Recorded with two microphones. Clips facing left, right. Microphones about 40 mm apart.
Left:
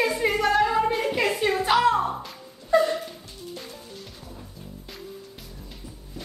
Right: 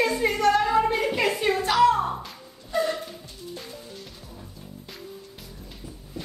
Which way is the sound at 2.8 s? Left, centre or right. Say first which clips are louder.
Even; centre.